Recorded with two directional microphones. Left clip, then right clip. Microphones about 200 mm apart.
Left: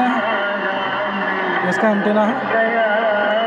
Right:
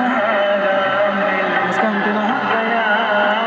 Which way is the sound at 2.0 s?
45° right (ahead or behind).